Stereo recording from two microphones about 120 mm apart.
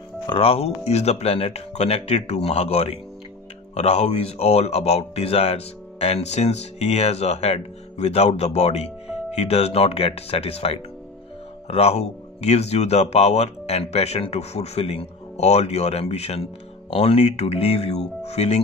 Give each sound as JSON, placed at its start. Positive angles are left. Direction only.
{"t": 0.3, "sound": "speech", "side_deg": 55}